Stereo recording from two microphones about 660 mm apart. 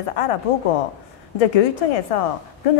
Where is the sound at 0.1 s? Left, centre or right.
Left.